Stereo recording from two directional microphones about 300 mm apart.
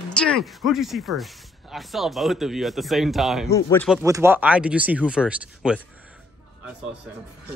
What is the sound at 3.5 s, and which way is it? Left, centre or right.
Speech, centre.